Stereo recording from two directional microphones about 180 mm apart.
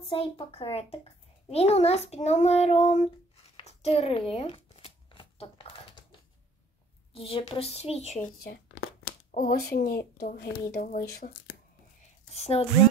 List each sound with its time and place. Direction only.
0.1 s a child's voice: 30° left (ahead or behind)
3.5 s a sound: 35° left (ahead or behind)
7.2 s a child's voice: 30° left (ahead or behind)
9.3 s a woman's voice: 50° left (ahead or behind)
12.4 s a woman's voice: 35° left (ahead or behind)